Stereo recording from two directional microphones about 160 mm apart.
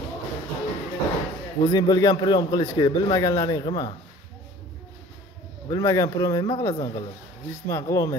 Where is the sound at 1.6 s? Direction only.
20° left (ahead or behind).